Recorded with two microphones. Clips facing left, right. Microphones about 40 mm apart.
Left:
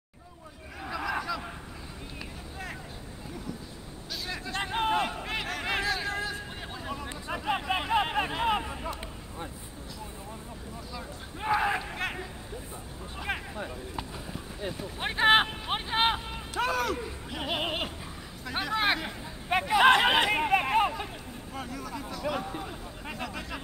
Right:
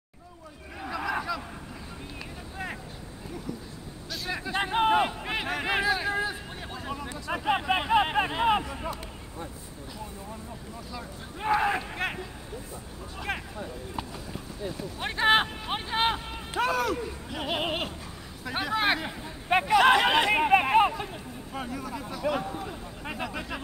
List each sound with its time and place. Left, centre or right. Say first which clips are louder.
0.7 s crowd: right 1 dB; centre
4.3 s a sound: right 5 dB; centre
6.7 s a sound: right 3 dB; centre
10.9 s speech: right 2 dB; centre
13.3 s speech: right 1 dB; centre
14.7 s speech: even; centre
16.3 s speech: right 2 dB; centre
19.8 s speech: left 2 dB; centre
20.2 s speech: right 4 dB; centre